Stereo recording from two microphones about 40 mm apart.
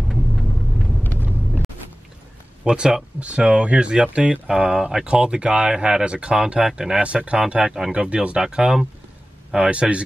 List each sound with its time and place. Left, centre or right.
0.1 s vehicle: centre
2.6 s speech: centre
3.2 s speech: right
4.5 s speech: centre
5.0 s speech: right
7.0 s speech: right
9.7 s speech: right